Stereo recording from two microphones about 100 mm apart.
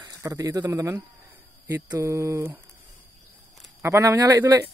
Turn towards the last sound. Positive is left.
turn(degrees=-25)  # may be behind; listen again after turning